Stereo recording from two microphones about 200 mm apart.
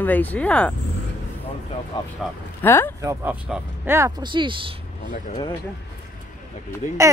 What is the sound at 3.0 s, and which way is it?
Speech, 15° right (ahead or behind).